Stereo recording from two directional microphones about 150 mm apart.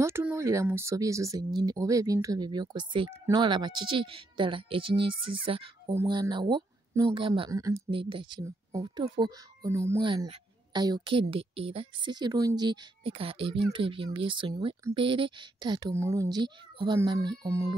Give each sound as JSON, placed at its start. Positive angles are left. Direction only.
{"t": 0.0, "sound": "a woman's voice", "side_deg": -15}
{"t": 15.9, "sound": "speech", "side_deg": -20}